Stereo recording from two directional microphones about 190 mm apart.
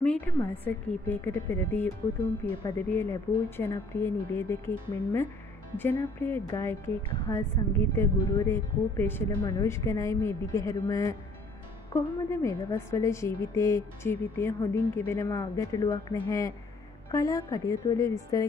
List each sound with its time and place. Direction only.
0.0 s a woman's voice: 5° left (ahead or behind)